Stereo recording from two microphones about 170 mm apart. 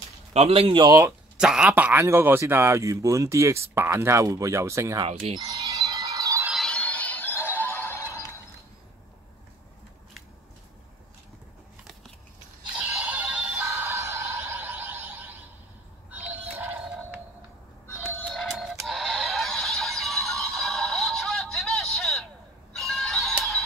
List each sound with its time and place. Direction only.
0.3 s speech: 35° right (ahead or behind)
0.8 s speech: 20° right (ahead or behind)
1.4 s speech: 5° right (ahead or behind)
5.0 s wind chime: 30° right (ahead or behind)
6.4 s music: centre (ahead or behind)
12.7 s music: 5° right (ahead or behind)
13.7 s a sound: 15° right (ahead or behind)
16.5 s a sound: 10° right (ahead or behind)
18.3 s music: centre (ahead or behind)
18.9 s synthetic singing: centre (ahead or behind)
22.7 s music: 5° left (ahead or behind)